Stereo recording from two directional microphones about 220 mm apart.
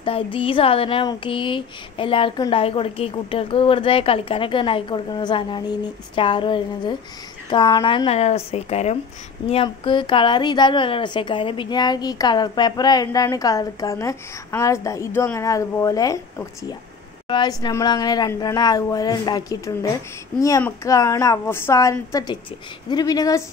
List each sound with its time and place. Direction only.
0.0 s a woman's voice: 25° left (ahead or behind)